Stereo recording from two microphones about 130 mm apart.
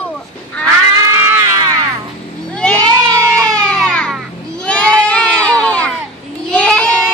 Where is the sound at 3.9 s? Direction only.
Centre (ahead or behind).